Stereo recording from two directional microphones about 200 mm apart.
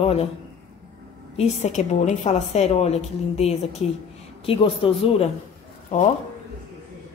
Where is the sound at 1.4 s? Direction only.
35° left (ahead or behind).